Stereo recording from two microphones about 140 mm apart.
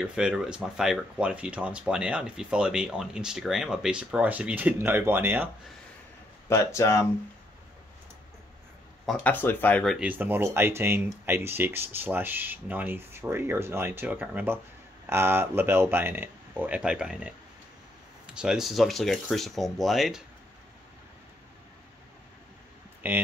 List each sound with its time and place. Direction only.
0.0 s speech: 5° right (ahead or behind)
6.5 s speech: 20° left (ahead or behind)
9.0 s speech: 10° left (ahead or behind)
9.9 s speech: 10° right (ahead or behind)
23.0 s speech: 15° right (ahead or behind)